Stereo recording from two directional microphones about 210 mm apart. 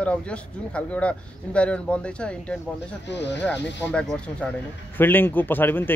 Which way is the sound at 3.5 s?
55° left (ahead or behind).